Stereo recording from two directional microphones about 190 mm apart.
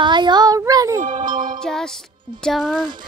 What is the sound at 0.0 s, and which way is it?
Child singing, 25° right (ahead or behind).